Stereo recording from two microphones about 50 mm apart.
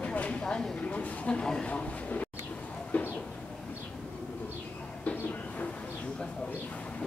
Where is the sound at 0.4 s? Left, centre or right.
Centre.